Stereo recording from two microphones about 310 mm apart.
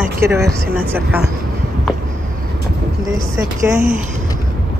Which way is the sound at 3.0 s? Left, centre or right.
Centre.